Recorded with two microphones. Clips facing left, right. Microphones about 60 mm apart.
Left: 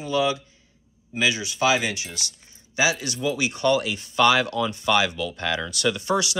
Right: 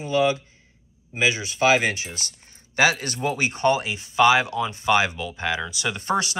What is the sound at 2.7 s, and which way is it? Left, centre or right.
Speech, right.